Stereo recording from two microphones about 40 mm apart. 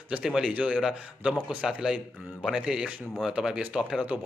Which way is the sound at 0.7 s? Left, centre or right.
Centre.